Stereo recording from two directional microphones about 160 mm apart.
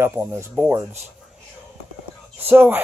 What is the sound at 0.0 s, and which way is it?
Speech, 15° right (ahead or behind).